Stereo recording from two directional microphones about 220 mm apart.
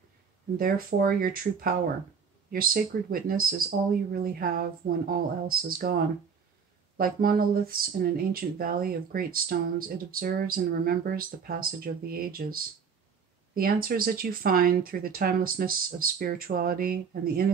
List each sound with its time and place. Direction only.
0.6 s speech: 40° right (ahead or behind)
7.0 s speech: 40° right (ahead or behind)